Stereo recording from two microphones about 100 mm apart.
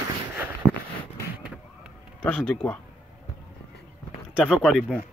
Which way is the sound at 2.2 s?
10° left (ahead or behind).